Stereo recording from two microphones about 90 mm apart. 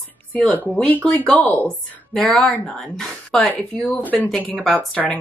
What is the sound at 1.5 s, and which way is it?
Speech, 20° left (ahead or behind).